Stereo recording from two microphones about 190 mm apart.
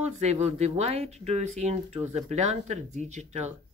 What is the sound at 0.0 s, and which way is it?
Speech, 35° right (ahead or behind).